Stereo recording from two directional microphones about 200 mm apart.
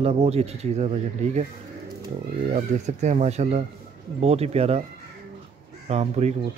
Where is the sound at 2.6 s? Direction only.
35° right (ahead or behind).